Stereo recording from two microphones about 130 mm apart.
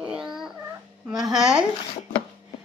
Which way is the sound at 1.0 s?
5° right (ahead or behind).